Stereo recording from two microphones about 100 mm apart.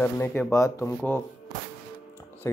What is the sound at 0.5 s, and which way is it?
Speech, 30° left (ahead or behind).